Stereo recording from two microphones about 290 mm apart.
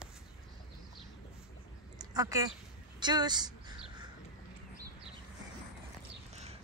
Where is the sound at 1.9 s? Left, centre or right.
Centre.